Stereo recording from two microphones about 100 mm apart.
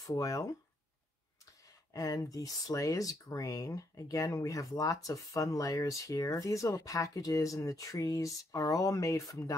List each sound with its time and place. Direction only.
0.0 s speech: 35° left (ahead or behind)
2.0 s speech: 35° left (ahead or behind)